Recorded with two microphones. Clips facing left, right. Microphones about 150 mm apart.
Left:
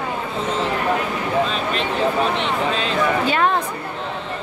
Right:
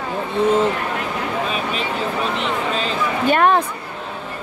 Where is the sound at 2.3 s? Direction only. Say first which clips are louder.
Left 1 dB; centre (ahead or behind).